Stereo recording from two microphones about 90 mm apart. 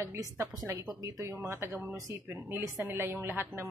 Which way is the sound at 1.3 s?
25° right (ahead or behind).